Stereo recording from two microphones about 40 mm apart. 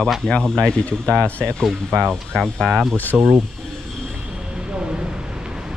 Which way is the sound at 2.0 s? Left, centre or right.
Centre.